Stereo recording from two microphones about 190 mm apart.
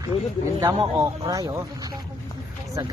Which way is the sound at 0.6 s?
15° right (ahead or behind).